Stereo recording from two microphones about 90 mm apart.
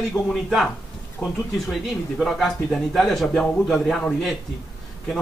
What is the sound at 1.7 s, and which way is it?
Speech, centre (ahead or behind).